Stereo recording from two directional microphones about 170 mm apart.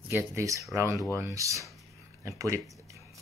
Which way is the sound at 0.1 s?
15° right (ahead or behind).